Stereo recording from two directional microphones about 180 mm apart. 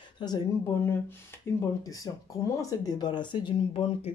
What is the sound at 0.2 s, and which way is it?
Speech, 25° left (ahead or behind).